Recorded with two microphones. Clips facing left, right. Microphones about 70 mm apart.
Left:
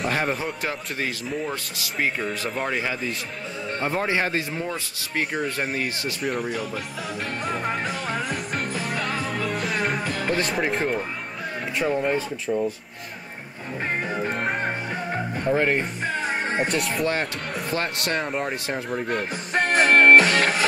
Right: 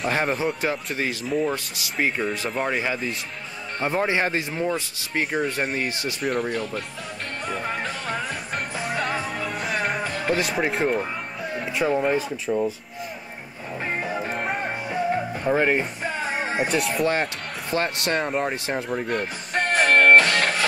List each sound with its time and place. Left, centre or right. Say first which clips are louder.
0.4 s speech: right 4 dB; centre
2.0 s speech: right 2 dB; centre
3.8 s speech: right 2 dB; centre
5.3 s speech: right 2 dB; centre
7.4 s music: left 1 dB; centre
8.8 s music: right 1 dB; centre
10.2 s speech: right 1 dB; centre
14.3 s music: left 1 dB; centre
15.4 s speech: right 1 dB; centre
17.7 s speech: right 4 dB; right
18.1 s music: right 2 dB; centre